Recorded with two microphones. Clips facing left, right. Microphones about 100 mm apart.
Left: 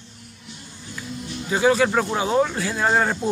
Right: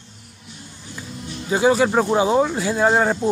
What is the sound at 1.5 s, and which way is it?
Speech, 20° right (ahead or behind).